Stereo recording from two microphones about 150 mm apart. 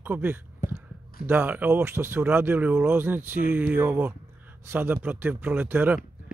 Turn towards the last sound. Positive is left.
turn(degrees=-15)  # may be behind; listen again after turning